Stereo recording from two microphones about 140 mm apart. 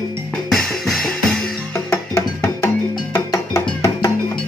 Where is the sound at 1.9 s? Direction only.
20° left (ahead or behind).